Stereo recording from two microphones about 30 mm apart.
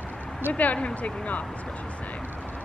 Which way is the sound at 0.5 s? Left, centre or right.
Left.